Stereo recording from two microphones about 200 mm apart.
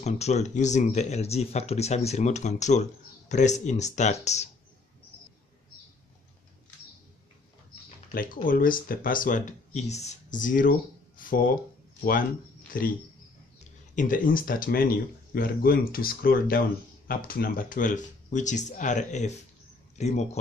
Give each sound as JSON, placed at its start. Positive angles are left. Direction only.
{"t": 0.0, "sound": "speech", "side_deg": 35}
{"t": 8.1, "sound": "speech", "side_deg": 45}
{"t": 13.9, "sound": "speech", "side_deg": 40}